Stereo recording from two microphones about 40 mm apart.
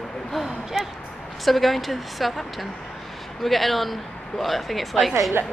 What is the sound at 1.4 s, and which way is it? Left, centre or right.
A man's voice, centre.